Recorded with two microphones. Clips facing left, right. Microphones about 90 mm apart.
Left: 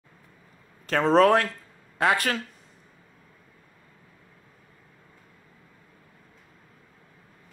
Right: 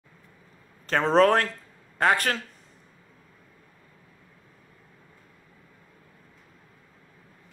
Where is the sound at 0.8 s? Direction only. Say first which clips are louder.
Left 1 dB; 30° right (ahead or behind).